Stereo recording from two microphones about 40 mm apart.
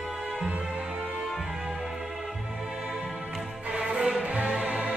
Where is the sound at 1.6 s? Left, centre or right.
Centre.